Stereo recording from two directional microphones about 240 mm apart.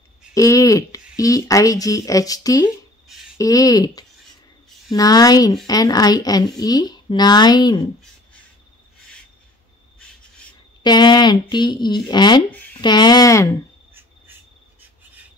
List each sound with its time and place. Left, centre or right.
0.3 s speech: centre
10.8 s speech: centre
12.4 s speech: centre
12.8 s speech: centre